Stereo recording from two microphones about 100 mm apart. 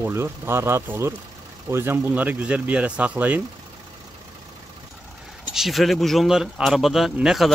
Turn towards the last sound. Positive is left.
turn(degrees=-5)  # may be behind; listen again after turning